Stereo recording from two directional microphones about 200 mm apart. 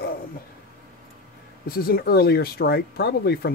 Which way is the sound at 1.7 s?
50° left (ahead or behind).